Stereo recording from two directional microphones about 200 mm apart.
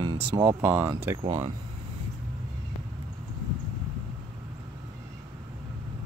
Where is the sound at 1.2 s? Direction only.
25° right (ahead or behind).